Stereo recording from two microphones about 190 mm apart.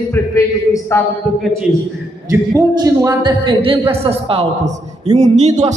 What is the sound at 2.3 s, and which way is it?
A man's voice, 20° right (ahead or behind).